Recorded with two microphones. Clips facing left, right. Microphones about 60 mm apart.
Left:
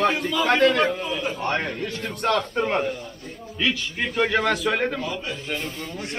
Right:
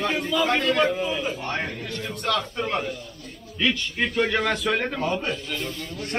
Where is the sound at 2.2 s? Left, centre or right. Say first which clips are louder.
Left 3 dB; left.